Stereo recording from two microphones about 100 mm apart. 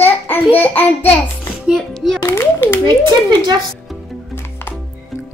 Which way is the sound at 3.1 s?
45° right (ahead or behind).